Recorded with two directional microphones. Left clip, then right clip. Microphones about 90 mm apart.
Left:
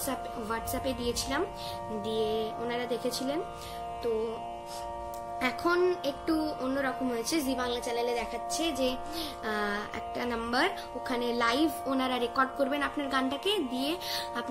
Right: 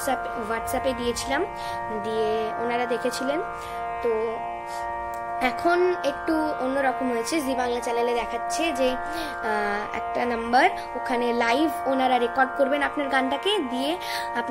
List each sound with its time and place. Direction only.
0.1 s speech: 10° left (ahead or behind)
5.4 s a woman's voice: 5° left (ahead or behind)
5.8 s speech: 20° left (ahead or behind)
6.2 s a woman's voice: 5° left (ahead or behind)